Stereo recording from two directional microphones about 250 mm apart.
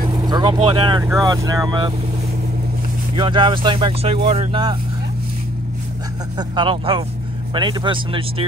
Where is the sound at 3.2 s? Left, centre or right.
Centre.